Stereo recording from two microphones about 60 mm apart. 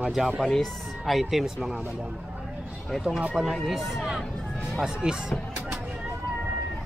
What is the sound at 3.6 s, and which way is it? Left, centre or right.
Speech, centre.